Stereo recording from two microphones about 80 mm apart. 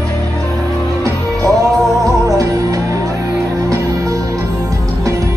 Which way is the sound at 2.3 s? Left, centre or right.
Right.